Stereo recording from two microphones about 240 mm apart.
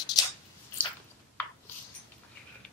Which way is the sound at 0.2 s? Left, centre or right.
Centre.